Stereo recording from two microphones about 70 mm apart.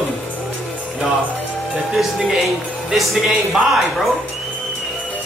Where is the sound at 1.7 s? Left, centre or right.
Centre.